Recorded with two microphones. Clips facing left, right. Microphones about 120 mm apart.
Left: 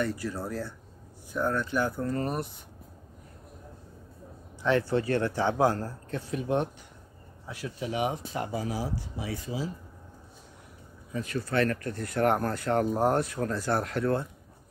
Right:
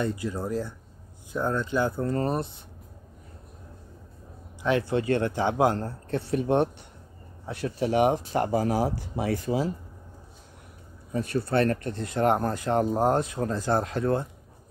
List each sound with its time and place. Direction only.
0.0 s speech: 20° right (ahead or behind)
4.6 s speech: 15° right (ahead or behind)
6.1 s speech: 35° right (ahead or behind)
8.1 s speech: 45° right (ahead or behind)
11.1 s speech: 30° right (ahead or behind)